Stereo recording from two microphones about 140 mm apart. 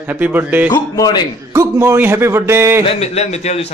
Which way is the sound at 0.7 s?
30° left (ahead or behind).